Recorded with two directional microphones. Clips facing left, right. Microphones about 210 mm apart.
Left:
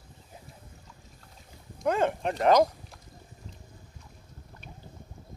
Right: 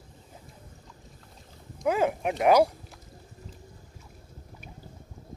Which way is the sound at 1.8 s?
5° right (ahead or behind).